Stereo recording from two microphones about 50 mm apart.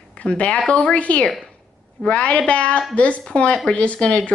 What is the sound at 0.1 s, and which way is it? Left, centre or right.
Speech, left.